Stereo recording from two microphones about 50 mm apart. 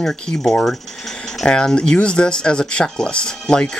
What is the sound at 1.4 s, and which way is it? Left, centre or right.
Speech, centre.